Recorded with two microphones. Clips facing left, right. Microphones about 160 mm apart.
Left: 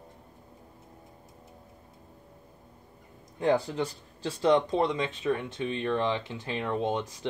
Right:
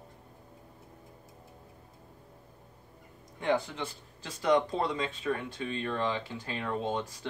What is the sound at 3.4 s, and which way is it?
Speech, 35° left (ahead or behind).